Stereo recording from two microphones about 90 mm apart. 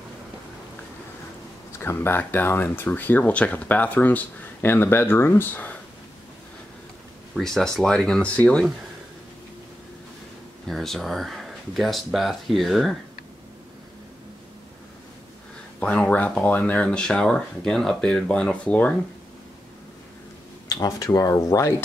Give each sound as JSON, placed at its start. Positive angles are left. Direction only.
{"t": 1.7, "sound": "speech", "side_deg": 30}
{"t": 7.3, "sound": "speech", "side_deg": 5}
{"t": 10.7, "sound": "speech", "side_deg": 0}
{"t": 15.8, "sound": "speech", "side_deg": 15}
{"t": 20.6, "sound": "speech", "side_deg": 45}